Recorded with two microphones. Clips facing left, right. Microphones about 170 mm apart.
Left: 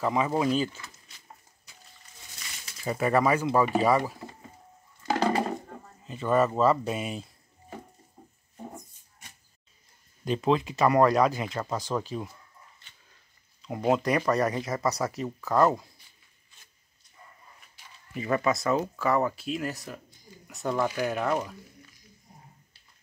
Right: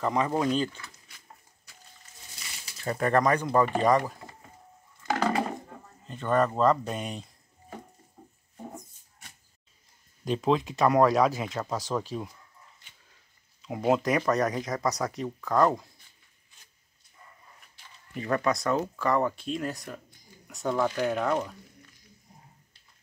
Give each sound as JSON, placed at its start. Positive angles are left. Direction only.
{"t": 0.0, "sound": "speech", "side_deg": 5}
{"t": 0.7, "sound": "a sound", "side_deg": 20}
{"t": 2.6, "sound": "speech", "side_deg": 5}
{"t": 6.0, "sound": "speech", "side_deg": 5}
{"t": 10.2, "sound": "speech", "side_deg": 0}
{"t": 13.6, "sound": "speech", "side_deg": 0}
{"t": 18.1, "sound": "speech", "side_deg": 5}